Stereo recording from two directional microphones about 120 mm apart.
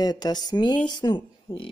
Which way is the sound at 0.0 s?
35° left (ahead or behind).